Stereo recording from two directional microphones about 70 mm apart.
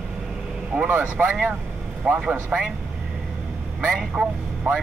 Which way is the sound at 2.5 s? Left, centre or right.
Centre.